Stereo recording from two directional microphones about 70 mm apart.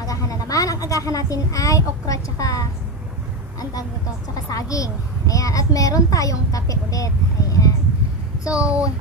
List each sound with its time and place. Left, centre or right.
0.0 s speech: left
4.5 s a woman's voice: left
8.5 s a child's voice: centre